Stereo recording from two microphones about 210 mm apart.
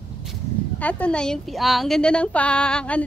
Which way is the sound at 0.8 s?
5° left (ahead or behind).